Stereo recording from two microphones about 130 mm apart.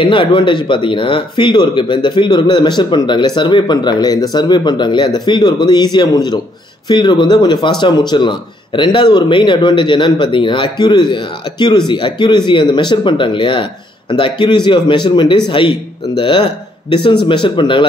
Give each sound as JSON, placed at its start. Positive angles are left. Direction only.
{"t": 0.0, "sound": "speech", "side_deg": 40}